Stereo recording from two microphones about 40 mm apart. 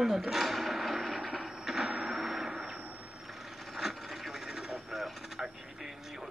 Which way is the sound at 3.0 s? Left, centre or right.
Centre.